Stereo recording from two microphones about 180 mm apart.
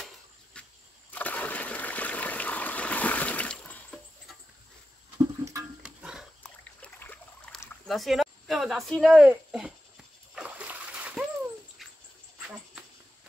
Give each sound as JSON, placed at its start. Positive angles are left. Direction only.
{"t": 0.5, "sound": "cricket", "side_deg": 5}
{"t": 1.1, "sound": "water", "side_deg": 10}
{"t": 5.4, "sound": "a sound", "side_deg": -20}
{"t": 5.8, "sound": "dog", "side_deg": -5}
{"t": 6.8, "sound": "a sound", "side_deg": 10}
{"t": 10.3, "sound": "splash", "side_deg": -5}
{"t": 11.8, "sound": "dog", "side_deg": 0}